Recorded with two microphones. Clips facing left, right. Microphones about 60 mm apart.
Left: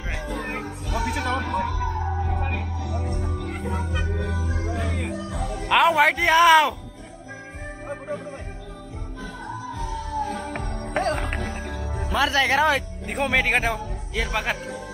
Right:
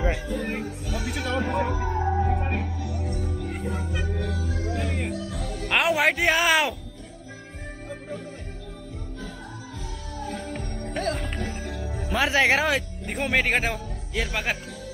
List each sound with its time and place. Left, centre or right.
0.1 s music: centre
1.4 s music: centre
2.0 s music: centre
3.0 s music: left
3.9 s music: centre
4.2 s music: left
5.7 s a man's voice: centre
9.8 s music: centre
11.8 s music: left
12.2 s speech: centre
12.6 s speech: centre